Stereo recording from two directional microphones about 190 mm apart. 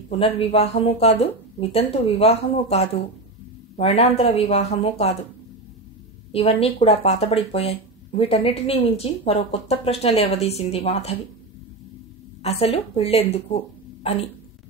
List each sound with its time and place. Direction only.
0.1 s speech: 30° left (ahead or behind)
6.3 s speech: 30° left (ahead or behind)
12.4 s speech: 30° left (ahead or behind)